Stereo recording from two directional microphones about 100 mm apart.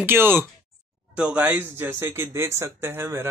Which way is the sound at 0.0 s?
20° right (ahead or behind).